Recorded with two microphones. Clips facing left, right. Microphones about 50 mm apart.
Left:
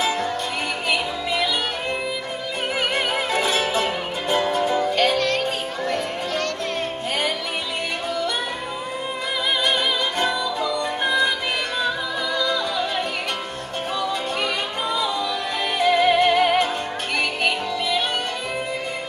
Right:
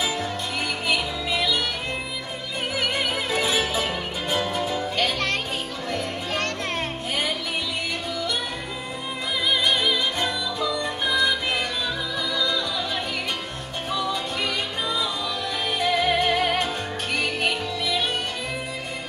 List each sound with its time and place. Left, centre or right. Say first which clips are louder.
0.9 s music: left 2 dB; centre
4.9 s music: left 4 dB; left
10.2 s music: left 3 dB; left
12.4 s music: left 3 dB; left
14.4 s music: left 2 dB; left
15.8 s music: left 5 dB; centre